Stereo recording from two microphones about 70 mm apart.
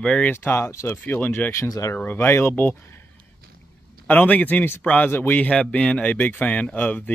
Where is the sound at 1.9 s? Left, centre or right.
Left.